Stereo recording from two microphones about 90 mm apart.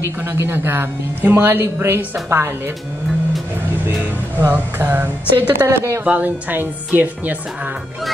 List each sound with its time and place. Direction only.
0.3 s speech: 25° right (ahead or behind)
3.8 s speech: 20° right (ahead or behind)